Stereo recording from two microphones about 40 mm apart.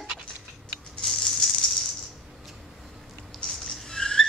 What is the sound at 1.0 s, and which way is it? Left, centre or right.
Rattle, centre.